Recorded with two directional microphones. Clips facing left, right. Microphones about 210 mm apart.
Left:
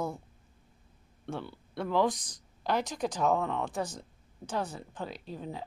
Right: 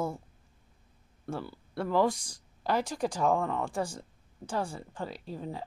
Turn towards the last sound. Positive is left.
turn(degrees=-5)  # may be behind; listen again after turning